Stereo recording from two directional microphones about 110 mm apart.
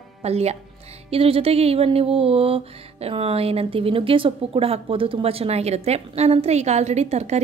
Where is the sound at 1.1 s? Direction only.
60° right (ahead or behind).